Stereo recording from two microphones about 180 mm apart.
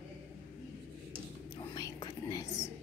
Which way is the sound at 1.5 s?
20° left (ahead or behind).